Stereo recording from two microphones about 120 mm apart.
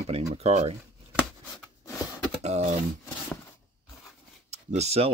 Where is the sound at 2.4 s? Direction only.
65° right (ahead or behind).